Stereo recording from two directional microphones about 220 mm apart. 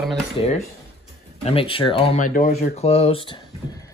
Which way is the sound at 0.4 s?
25° left (ahead or behind).